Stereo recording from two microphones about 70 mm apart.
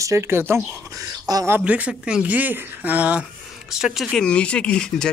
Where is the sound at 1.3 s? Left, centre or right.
Right.